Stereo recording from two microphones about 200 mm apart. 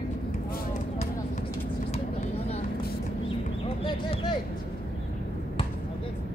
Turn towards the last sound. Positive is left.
turn(degrees=25)  # may be behind; listen again after turning